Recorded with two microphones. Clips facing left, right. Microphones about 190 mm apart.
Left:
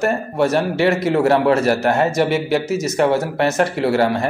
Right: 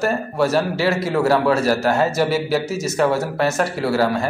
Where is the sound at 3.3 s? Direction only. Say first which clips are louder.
Left 2 dB; 20° left (ahead or behind).